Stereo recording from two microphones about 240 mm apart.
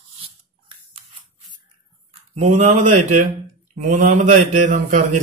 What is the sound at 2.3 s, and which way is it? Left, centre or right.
A man's voice, right.